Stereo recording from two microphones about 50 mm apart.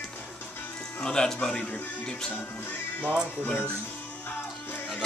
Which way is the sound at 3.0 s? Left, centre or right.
Right.